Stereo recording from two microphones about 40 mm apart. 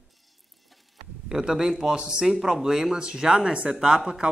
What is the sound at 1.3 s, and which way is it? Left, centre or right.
Speech, centre.